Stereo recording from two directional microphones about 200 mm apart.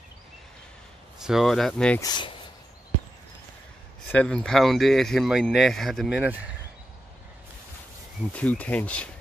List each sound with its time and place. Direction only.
1.2 s speech: centre (ahead or behind)
2.0 s speech: 20° left (ahead or behind)
4.1 s speech: 5° left (ahead or behind)
8.3 s speech: 5° left (ahead or behind)